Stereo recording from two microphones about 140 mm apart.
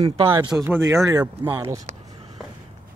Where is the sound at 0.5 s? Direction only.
15° right (ahead or behind).